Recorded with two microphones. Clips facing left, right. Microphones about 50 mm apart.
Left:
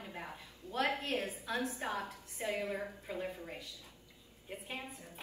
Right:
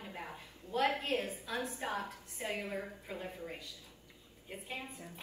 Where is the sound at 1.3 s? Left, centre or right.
Left.